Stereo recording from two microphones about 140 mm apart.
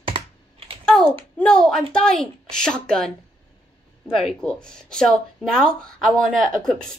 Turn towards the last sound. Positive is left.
turn(degrees=5)  # may be behind; listen again after turning